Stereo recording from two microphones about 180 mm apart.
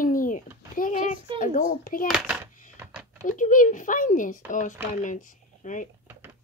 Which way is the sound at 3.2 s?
45° left (ahead or behind).